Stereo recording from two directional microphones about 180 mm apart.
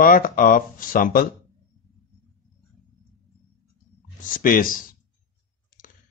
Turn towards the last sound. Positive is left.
turn(degrees=50)  # may be behind; listen again after turning